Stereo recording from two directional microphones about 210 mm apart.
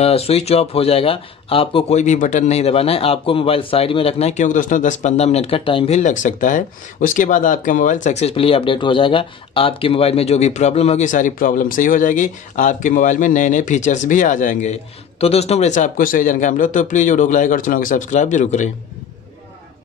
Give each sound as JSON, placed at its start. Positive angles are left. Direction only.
{"t": 0.0, "sound": "speech", "side_deg": 30}